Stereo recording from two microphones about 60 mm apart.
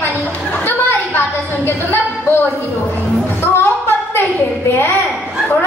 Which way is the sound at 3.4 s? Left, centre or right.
Left.